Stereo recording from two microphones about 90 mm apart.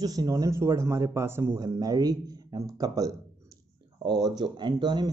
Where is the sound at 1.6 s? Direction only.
45° right (ahead or behind).